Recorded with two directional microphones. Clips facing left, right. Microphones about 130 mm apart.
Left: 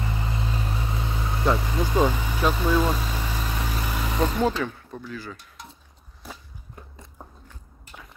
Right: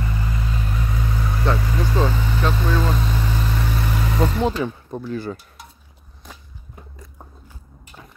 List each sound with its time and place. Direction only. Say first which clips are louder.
0.0 s vehicle: right 2 dB; 25° left (ahead or behind); by 4.6 s centre (ahead or behind)
4.9 s speech: right 8 dB; 30° right (ahead or behind)